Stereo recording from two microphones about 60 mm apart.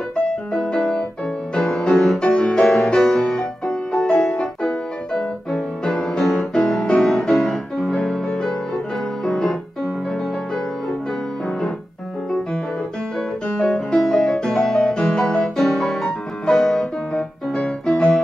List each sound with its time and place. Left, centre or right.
0.5 s piano: centre
1.7 s music: centre
9.2 s keyboard: centre
13.6 s music: centre
13.9 s music: centre